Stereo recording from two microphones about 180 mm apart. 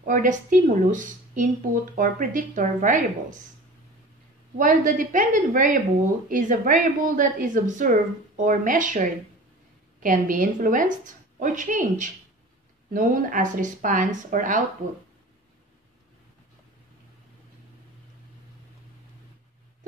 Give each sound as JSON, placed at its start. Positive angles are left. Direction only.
{"t": 0.0, "sound": "a woman's voice", "side_deg": -45}
{"t": 4.6, "sound": "a woman's voice", "side_deg": -45}